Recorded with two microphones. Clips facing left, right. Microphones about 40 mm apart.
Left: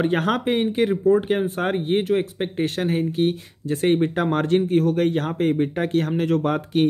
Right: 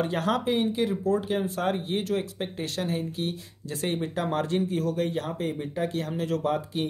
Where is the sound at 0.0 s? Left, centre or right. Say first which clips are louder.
Left 5 dB; left.